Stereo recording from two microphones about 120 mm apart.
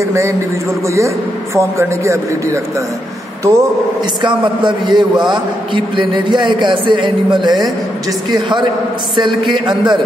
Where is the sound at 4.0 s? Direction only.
40° right (ahead or behind).